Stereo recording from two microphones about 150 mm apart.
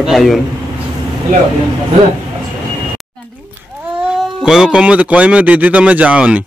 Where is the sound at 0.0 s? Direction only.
Centre (ahead or behind).